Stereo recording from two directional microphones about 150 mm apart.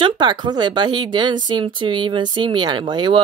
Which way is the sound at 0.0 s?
30° right (ahead or behind).